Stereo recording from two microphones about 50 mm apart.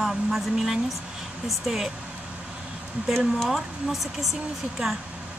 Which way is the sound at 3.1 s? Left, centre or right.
Centre.